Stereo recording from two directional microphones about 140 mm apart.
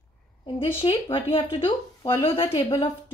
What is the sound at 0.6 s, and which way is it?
Speech, 40° left (ahead or behind).